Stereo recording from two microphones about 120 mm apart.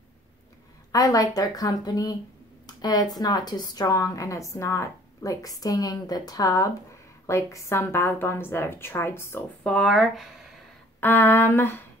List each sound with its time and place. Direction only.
0.9 s a woman's voice: 30° left (ahead or behind)
9.6 s speech: 5° left (ahead or behind)
11.0 s speech: 20° left (ahead or behind)